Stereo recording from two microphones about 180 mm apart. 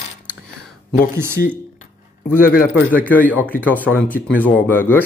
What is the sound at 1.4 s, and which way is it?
Speech, 55° left (ahead or behind).